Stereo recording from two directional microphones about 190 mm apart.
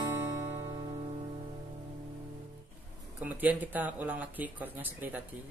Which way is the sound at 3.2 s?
10° right (ahead or behind).